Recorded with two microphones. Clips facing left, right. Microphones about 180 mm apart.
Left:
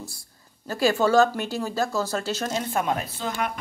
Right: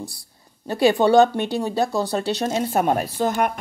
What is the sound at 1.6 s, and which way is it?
Speech, 30° right (ahead or behind).